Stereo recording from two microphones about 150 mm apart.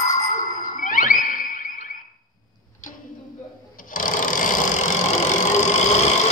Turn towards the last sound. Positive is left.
turn(degrees=50)  # may be behind; listen again after turning